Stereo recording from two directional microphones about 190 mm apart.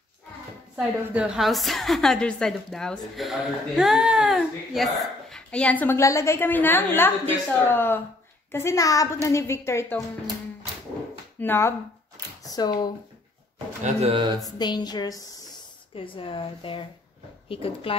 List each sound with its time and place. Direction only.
0.7 s a woman's voice: 5° right (ahead or behind); by 9.9 s 15° left (ahead or behind)
11.3 s a woman's voice: 10° left (ahead or behind)
14.0 s speech: 30° right (ahead or behind)
14.4 s speech: 20° left (ahead or behind)